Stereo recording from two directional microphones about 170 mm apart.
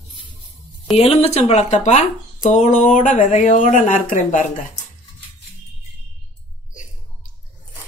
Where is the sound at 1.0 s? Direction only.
40° left (ahead or behind).